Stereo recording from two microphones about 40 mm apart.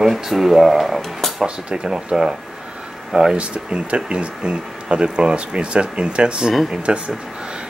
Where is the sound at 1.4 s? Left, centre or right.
Centre.